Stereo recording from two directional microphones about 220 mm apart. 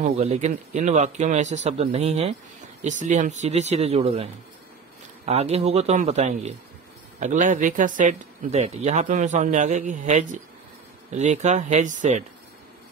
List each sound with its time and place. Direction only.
0.0 s a man's voice: 30° right (ahead or behind)